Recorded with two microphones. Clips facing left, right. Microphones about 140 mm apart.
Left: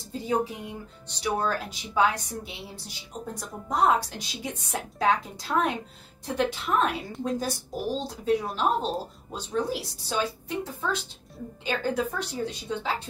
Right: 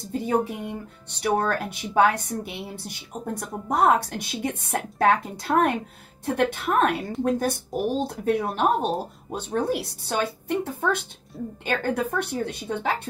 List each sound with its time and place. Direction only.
0.1 s music: 60° right (ahead or behind)
1.2 s a woman's voice: 55° right (ahead or behind)